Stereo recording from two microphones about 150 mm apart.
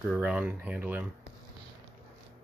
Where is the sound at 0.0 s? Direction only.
5° right (ahead or behind).